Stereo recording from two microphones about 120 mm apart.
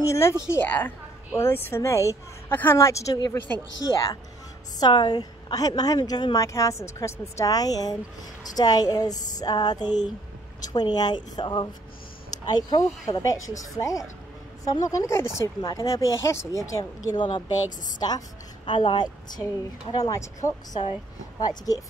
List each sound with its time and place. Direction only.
0.1 s a woman's voice: 25° left (ahead or behind)